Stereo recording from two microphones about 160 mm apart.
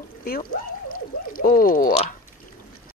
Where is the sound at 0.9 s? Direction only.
60° left (ahead or behind).